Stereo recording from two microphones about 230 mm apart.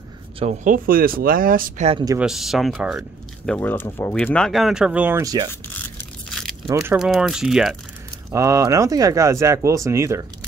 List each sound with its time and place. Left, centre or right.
0.4 s speech: right
2.1 s speech: centre
6.7 s speech: centre
8.3 s speech: centre